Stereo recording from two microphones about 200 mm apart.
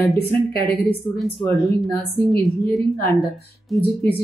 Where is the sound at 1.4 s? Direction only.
10° left (ahead or behind).